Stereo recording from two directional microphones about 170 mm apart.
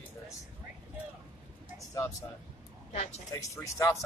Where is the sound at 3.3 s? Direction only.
15° left (ahead or behind).